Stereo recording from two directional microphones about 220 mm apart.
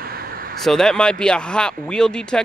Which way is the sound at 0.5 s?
Centre (ahead or behind).